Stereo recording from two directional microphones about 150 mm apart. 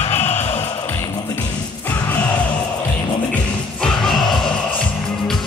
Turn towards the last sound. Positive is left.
turn(degrees=0)  # may be behind; listen again after turning